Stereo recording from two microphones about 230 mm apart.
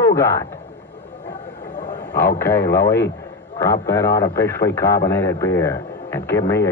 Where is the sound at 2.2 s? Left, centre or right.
Centre.